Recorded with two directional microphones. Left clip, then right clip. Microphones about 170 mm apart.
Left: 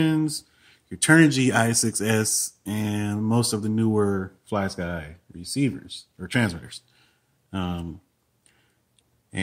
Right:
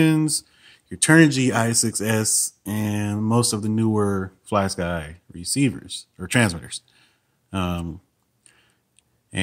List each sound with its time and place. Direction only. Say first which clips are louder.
0.0 s speech: right 4 dB; 35° right (ahead or behind)